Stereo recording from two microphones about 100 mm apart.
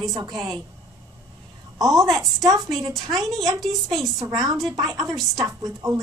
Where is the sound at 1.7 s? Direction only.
35° right (ahead or behind).